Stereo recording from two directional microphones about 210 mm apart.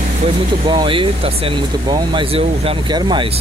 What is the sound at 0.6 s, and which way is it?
Speech, 20° right (ahead or behind).